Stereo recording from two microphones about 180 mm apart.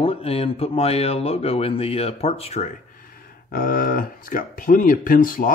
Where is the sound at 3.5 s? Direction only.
50° left (ahead or behind).